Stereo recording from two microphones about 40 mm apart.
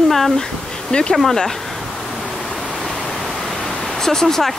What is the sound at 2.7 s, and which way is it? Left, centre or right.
Pink noise, centre.